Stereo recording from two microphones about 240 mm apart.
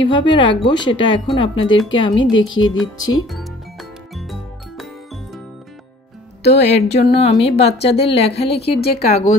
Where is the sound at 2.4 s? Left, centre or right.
Left.